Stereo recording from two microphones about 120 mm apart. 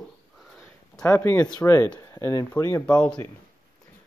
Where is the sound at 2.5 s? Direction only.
20° left (ahead or behind).